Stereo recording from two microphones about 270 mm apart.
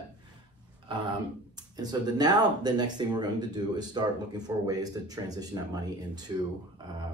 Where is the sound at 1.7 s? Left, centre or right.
Centre.